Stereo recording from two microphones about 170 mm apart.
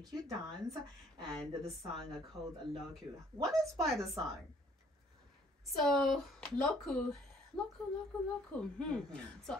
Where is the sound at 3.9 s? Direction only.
20° right (ahead or behind).